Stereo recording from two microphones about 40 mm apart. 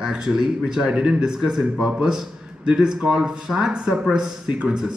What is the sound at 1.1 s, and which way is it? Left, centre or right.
A man's voice, centre.